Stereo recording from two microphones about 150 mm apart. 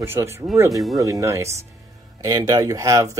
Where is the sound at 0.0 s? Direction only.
15° right (ahead or behind).